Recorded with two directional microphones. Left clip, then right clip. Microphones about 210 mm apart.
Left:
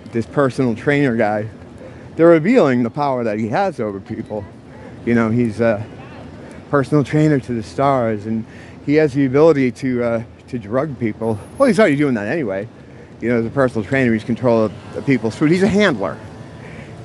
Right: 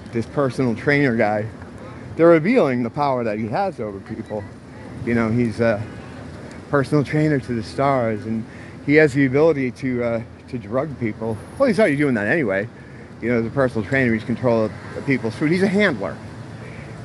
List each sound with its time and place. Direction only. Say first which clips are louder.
0.1 s speech: left 4 dB; 20° left (ahead or behind)
5.0 s speech: left 4 dB; 20° left (ahead or behind)
9.3 s speech: left 4 dB; 25° left (ahead or behind)
12.1 s speech: right 1 dB; 10° left (ahead or behind)
13.2 s speech: left 3 dB; 20° left (ahead or behind)